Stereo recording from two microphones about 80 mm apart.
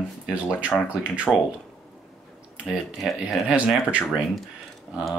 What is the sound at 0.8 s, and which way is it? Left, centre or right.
Speech, centre.